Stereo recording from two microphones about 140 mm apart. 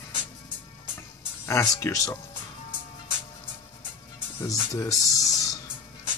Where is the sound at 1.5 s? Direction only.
20° left (ahead or behind).